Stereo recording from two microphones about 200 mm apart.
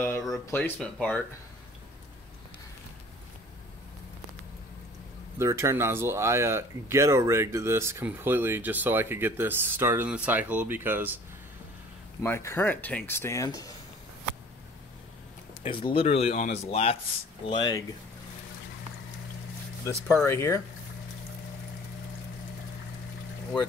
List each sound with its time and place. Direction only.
0.0 s speech: 10° left (ahead or behind)
5.4 s speech: 15° right (ahead or behind)
12.2 s speech: 15° left (ahead or behind)
15.6 s speech: 25° left (ahead or behind)
20.2 s speech: 15° left (ahead or behind)